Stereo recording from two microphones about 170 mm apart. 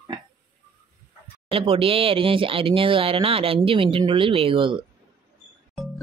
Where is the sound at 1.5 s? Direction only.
35° right (ahead or behind).